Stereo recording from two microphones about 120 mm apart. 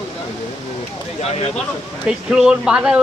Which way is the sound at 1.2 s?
60° left (ahead or behind).